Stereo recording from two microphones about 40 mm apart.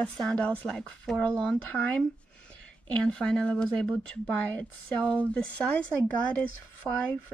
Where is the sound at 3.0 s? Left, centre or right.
Left.